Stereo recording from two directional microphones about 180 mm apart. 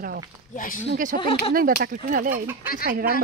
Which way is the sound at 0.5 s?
50° left (ahead or behind).